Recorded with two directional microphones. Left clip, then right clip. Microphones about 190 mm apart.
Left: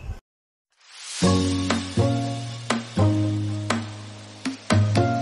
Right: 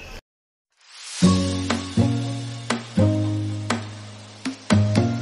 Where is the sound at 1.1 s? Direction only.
Centre (ahead or behind).